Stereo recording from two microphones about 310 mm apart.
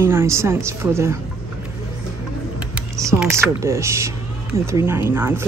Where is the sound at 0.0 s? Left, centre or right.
Centre.